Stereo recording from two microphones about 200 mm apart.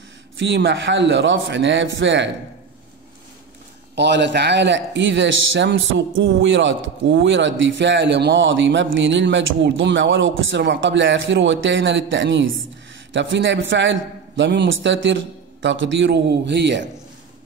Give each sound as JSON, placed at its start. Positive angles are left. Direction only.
{"t": 0.4, "sound": "a man's voice", "side_deg": -60}
{"t": 3.9, "sound": "a man's voice", "side_deg": -60}